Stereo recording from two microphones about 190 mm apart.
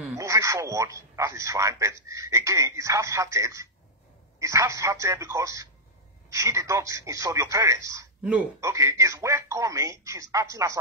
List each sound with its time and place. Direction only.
0.2 s speech: 15° right (ahead or behind)